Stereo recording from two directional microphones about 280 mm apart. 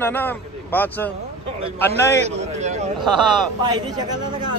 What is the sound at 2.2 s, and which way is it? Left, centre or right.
Speech, right.